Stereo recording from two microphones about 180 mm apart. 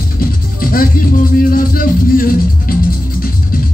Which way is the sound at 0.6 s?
55° left (ahead or behind).